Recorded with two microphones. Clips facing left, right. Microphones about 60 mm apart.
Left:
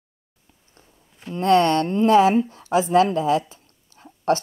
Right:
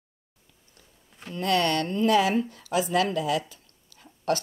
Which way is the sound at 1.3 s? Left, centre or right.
Left.